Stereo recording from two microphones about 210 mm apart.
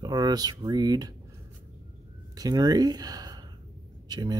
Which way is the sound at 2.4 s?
20° right (ahead or behind).